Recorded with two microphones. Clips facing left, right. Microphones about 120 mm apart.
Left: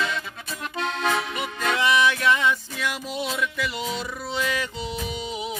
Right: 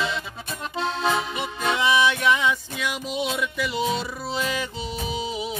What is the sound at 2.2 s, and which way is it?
Music, 10° right (ahead or behind).